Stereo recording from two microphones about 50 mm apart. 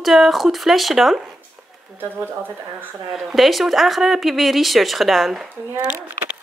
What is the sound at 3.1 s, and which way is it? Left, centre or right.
Speech, centre.